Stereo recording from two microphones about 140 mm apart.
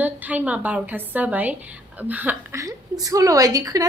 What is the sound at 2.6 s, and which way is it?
A woman's voice, 25° right (ahead or behind).